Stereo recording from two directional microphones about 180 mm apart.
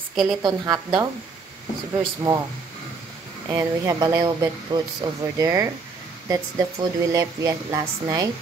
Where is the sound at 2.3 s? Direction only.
15° right (ahead or behind).